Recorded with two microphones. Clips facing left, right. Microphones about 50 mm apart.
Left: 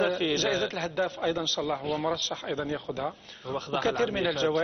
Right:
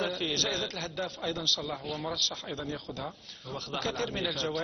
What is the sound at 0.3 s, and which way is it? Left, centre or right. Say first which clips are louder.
Speech: left 5 dB; left.